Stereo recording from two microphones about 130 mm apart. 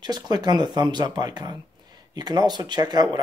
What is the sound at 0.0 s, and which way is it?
Speech, 30° right (ahead or behind).